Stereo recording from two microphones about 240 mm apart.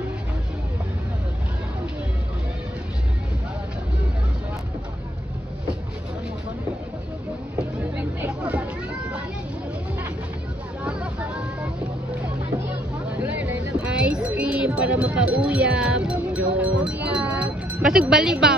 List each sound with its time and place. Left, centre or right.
7.9 s chatter: centre
10.8 s vehicle: centre
13.1 s a sound: centre
16.5 s wind chime: centre